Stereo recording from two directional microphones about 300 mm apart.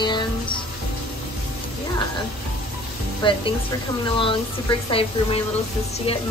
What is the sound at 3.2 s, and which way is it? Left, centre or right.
Music, centre.